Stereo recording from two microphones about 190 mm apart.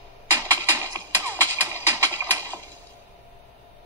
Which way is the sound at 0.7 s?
15° right (ahead or behind).